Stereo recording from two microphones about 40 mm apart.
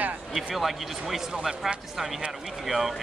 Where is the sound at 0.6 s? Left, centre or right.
Centre.